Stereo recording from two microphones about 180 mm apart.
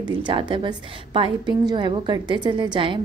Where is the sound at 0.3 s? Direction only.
30° right (ahead or behind).